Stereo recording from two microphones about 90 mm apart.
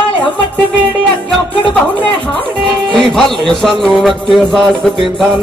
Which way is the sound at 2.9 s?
5° left (ahead or behind).